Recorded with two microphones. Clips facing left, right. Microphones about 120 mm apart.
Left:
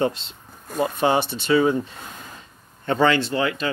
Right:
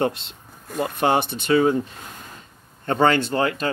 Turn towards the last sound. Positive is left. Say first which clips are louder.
# right 1 dB
turn(degrees=-45)  # may be behind; listen again after turning